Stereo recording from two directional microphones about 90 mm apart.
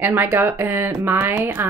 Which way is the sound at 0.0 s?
25° right (ahead or behind).